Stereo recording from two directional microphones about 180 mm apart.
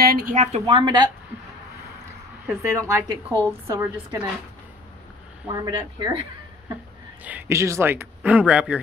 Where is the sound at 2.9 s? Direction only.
25° right (ahead or behind).